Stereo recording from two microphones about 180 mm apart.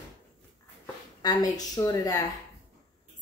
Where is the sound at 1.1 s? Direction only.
20° left (ahead or behind).